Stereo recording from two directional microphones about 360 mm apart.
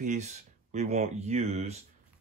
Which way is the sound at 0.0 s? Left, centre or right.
Centre.